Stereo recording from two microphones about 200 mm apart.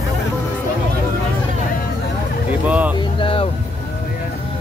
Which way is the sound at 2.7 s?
5° right (ahead or behind).